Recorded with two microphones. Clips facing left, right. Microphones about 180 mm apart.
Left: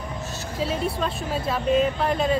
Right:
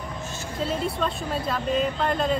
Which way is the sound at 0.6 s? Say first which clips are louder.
Left 1 dB; 5° left (ahead or behind).